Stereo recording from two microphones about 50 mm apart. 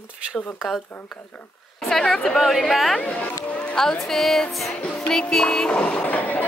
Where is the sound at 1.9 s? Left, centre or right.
Centre.